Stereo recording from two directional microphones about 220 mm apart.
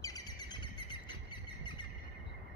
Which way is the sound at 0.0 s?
15° left (ahead or behind).